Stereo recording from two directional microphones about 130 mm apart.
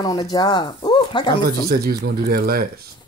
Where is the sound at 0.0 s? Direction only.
30° left (ahead or behind).